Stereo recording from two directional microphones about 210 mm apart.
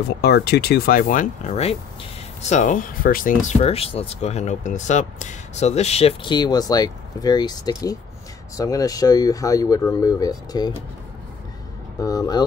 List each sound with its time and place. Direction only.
0.2 s speech: 50° left (ahead or behind); by 10.7 s 20° left (ahead or behind)
12.0 s speech: 15° left (ahead or behind)